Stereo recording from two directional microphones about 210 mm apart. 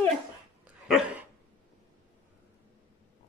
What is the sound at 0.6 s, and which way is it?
Dog, 5° right (ahead or behind).